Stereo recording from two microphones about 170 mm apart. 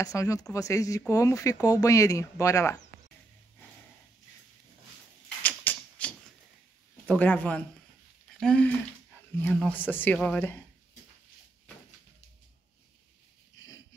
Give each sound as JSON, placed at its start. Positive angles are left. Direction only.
{"t": 0.0, "sound": "speech", "side_deg": 20}
{"t": 5.4, "sound": "typewriter", "side_deg": 10}
{"t": 7.1, "sound": "speech", "side_deg": 10}
{"t": 13.6, "sound": "a sound", "side_deg": 20}